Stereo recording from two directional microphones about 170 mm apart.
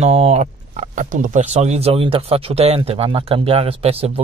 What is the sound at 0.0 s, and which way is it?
A man's voice, 40° right (ahead or behind).